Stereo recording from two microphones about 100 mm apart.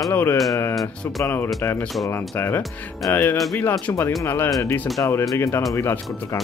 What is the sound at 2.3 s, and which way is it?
Speech, 25° left (ahead or behind).